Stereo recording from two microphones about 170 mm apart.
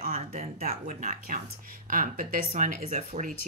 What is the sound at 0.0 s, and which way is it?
Speech, 55° right (ahead or behind).